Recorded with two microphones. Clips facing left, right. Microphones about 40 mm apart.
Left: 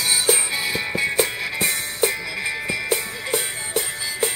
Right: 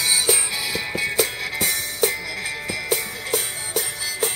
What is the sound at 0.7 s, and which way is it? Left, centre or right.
Music, left.